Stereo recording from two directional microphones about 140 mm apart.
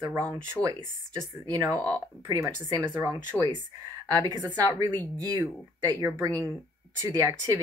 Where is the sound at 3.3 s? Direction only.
10° left (ahead or behind).